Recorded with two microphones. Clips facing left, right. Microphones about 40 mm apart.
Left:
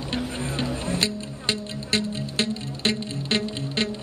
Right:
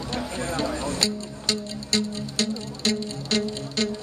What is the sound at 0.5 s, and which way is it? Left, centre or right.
Music, left.